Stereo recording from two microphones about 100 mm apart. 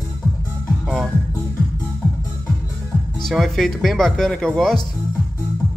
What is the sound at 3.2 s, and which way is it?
Speech, 5° left (ahead or behind).